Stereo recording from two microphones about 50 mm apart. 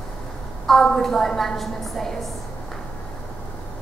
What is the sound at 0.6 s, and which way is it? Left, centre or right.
A woman's voice, centre.